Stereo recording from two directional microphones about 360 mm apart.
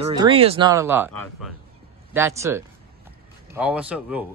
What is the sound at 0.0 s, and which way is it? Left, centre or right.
Speech, centre.